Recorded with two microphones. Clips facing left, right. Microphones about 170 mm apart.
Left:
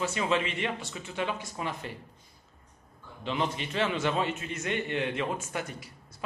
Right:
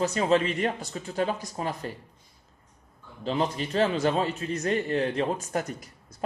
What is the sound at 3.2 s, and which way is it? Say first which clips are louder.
Speech: right 4 dB; 40° right (ahead or behind).